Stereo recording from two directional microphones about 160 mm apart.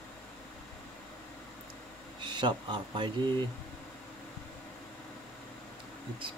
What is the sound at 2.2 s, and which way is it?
Speech, 30° right (ahead or behind).